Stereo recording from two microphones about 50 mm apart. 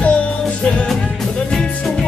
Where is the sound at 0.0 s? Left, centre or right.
Left.